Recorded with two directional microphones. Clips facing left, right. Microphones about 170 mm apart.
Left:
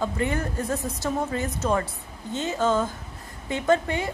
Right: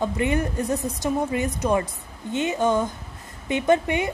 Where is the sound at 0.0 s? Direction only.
20° right (ahead or behind).